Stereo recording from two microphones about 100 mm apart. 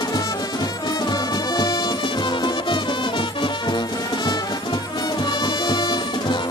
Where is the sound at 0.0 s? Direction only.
40° left (ahead or behind).